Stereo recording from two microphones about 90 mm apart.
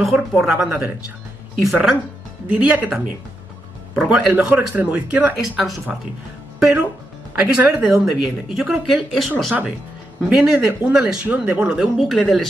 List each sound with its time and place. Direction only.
0.3 s speech: 5° right (ahead or behind)
0.7 s speech: 20° right (ahead or behind)
1.6 s speech: 5° right (ahead or behind)
2.5 s speech: 15° right (ahead or behind)
3.9 s speech: 5° right (ahead or behind)
4.3 s speech: 20° right (ahead or behind)
5.4 s speech: 5° right (ahead or behind)